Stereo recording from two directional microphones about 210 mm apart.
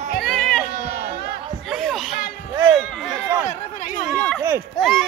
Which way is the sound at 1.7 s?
Centre (ahead or behind).